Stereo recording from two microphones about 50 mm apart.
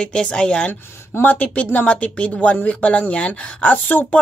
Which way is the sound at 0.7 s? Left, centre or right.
Left.